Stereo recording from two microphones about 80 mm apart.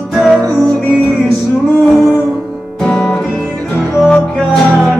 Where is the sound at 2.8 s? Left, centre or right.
Centre.